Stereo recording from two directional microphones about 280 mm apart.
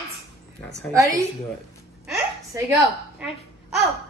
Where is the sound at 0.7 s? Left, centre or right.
Centre.